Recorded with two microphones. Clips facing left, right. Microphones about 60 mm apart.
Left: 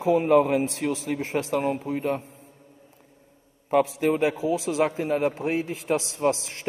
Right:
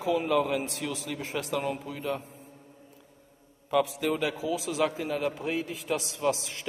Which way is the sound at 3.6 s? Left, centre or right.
Left.